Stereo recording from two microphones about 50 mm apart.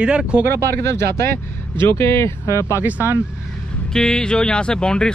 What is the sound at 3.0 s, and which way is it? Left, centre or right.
Speech, right.